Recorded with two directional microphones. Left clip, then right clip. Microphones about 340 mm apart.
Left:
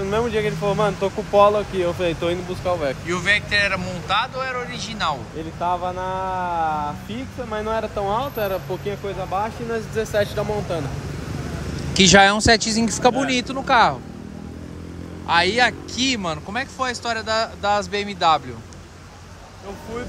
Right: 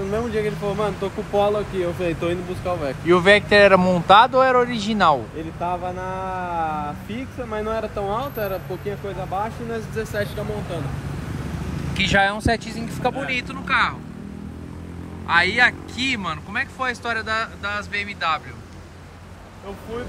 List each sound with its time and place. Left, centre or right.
0.1 s speech: centre
3.1 s speech: centre
5.6 s speech: centre
11.9 s speech: centre
15.2 s speech: centre